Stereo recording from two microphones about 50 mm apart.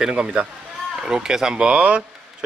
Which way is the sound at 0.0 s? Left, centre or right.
Centre.